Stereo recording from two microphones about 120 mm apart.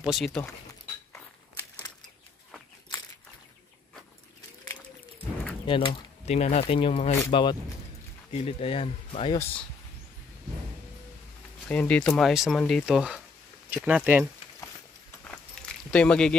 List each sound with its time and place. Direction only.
0.0 s speech: 5° right (ahead or behind)
5.7 s speech: 45° left (ahead or behind)
6.2 s speech: 65° left (ahead or behind)
7.2 s speech: 45° left (ahead or behind)
8.3 s speech: 60° left (ahead or behind)
11.6 s speech: 10° left (ahead or behind); by 14.2 s 15° right (ahead or behind)
15.2 s walk: 10° left (ahead or behind)